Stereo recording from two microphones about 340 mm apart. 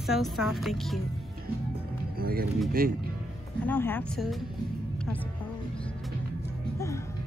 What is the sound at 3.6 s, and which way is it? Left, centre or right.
Speech, centre.